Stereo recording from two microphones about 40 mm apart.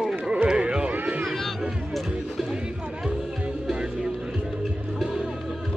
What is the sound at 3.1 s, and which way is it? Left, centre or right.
Music, centre.